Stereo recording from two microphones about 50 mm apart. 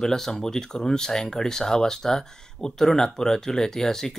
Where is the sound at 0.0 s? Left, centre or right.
Centre.